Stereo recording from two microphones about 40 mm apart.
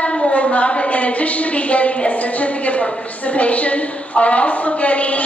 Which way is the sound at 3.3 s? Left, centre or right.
Left.